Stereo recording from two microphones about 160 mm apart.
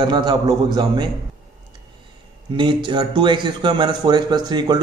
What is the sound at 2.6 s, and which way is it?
Speech, 30° right (ahead or behind).